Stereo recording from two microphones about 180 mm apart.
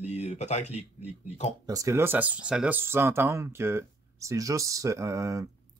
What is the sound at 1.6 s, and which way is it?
Speech, 20° right (ahead or behind).